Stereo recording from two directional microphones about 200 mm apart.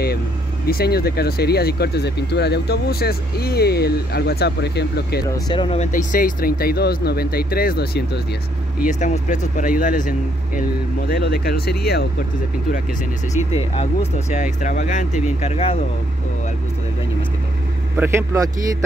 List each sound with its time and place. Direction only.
0.7 s speech: 50° left (ahead or behind)
5.3 s speech: 25° left (ahead or behind)
5.9 s speech: 40° left (ahead or behind)
8.7 s speech: 40° left (ahead or behind)
13.3 s speech: 35° left (ahead or behind)
17.9 s a man's voice: 10° right (ahead or behind)